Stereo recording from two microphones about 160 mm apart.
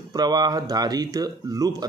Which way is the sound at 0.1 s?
25° right (ahead or behind).